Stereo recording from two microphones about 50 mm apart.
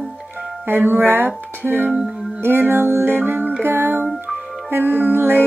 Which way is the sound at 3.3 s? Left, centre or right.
Right.